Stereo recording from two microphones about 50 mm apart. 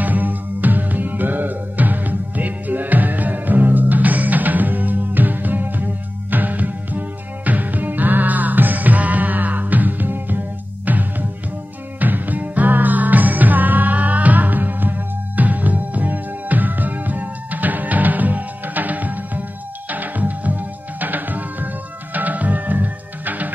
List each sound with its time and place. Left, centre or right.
0.0 s music: right